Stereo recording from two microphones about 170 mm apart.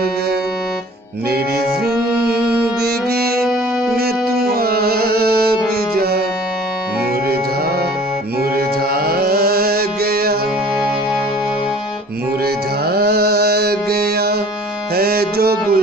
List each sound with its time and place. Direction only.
4.0 s music: 65° right (ahead or behind)
8.5 s music: 65° right (ahead or behind)
12.9 s music: 65° right (ahead or behind)